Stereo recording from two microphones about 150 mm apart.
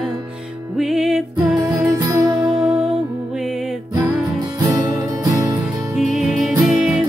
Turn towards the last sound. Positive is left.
turn(degrees=-5)  # may be behind; listen again after turning